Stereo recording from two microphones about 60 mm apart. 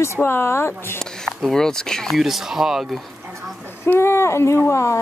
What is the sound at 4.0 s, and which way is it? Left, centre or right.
Speech, left.